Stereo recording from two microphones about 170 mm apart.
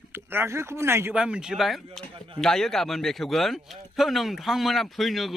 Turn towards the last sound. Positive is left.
turn(degrees=0)  # may be behind; listen again after turning